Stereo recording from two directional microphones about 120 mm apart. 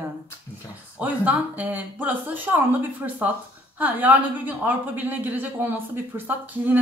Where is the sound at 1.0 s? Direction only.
15° right (ahead or behind).